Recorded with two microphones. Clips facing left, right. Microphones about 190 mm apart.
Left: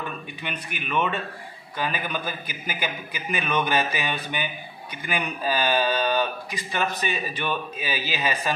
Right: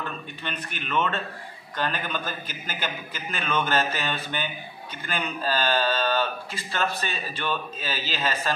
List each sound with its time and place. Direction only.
0.4 s speech: 10° left (ahead or behind)